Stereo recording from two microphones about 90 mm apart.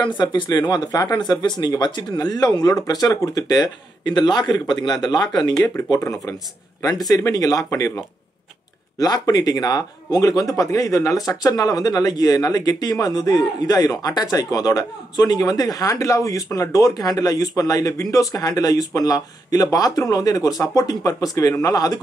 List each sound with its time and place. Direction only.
0.0 s speech: 60° left (ahead or behind)
5.9 s speech: 35° left (ahead or behind)
6.8 s speech: 45° left (ahead or behind)